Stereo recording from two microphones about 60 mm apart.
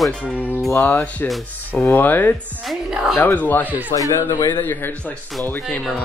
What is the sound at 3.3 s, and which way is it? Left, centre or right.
Speech, left.